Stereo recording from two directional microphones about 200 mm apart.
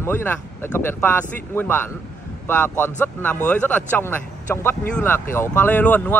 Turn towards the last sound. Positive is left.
turn(degrees=10)  # may be behind; listen again after turning